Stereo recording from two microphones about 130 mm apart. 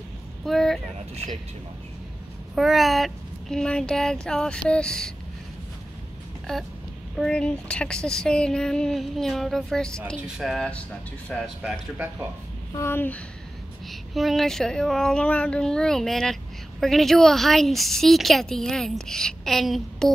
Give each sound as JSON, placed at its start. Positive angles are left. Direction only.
{"t": 0.5, "sound": "vehicle", "side_deg": 5}
{"t": 2.5, "sound": "a woman's voice", "side_deg": 0}
{"t": 7.2, "sound": "a woman's voice", "side_deg": 5}
{"t": 12.7, "sound": "speech", "side_deg": 20}
{"t": 13.8, "sound": "a woman's voice", "side_deg": 0}